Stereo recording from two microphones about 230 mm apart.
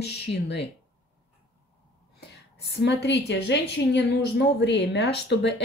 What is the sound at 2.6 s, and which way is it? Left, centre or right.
A woman's voice, left.